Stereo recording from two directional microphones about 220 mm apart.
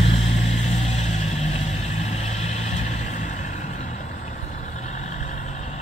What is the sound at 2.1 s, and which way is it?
Vehicle, 30° left (ahead or behind).